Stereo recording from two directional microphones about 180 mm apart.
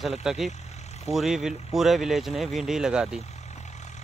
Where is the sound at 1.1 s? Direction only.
Centre (ahead or behind).